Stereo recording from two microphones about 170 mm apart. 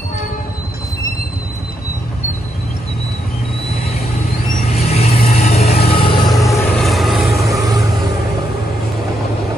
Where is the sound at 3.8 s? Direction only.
40° left (ahead or behind).